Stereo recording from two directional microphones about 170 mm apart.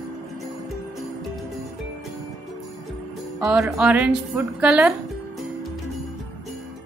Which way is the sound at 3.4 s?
Centre (ahead or behind).